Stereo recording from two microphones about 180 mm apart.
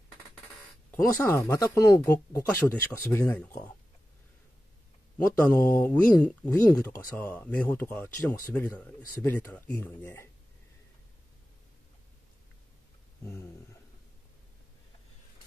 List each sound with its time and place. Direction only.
0.9 s speech: 15° left (ahead or behind)
5.1 s speech: 10° left (ahead or behind)
13.2 s speech: 15° left (ahead or behind)